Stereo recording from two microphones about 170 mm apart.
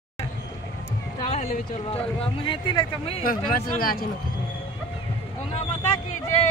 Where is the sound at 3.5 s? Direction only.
60° left (ahead or behind).